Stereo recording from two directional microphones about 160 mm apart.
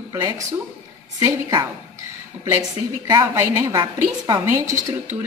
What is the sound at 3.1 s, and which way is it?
A woman's voice, 20° right (ahead or behind).